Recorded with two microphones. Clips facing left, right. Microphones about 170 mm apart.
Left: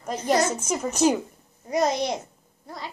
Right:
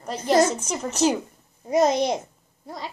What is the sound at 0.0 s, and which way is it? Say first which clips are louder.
Speech: right 3 dB; 10° left (ahead or behind).